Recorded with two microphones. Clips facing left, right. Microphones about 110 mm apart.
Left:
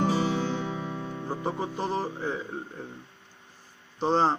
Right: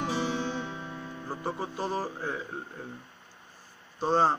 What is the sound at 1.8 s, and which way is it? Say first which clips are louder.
Music: left 1 dB; 20° left (ahead or behind).